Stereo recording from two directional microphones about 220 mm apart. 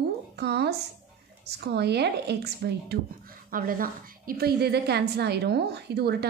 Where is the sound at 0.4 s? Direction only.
50° right (ahead or behind).